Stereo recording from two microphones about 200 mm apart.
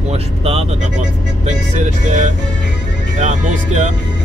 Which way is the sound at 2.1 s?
40° right (ahead or behind).